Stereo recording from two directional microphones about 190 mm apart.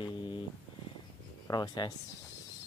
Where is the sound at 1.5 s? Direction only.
20° left (ahead or behind).